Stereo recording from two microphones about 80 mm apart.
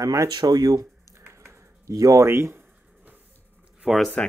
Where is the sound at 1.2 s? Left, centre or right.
Right.